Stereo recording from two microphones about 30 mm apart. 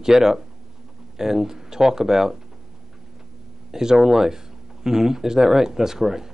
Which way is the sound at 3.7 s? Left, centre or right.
Centre.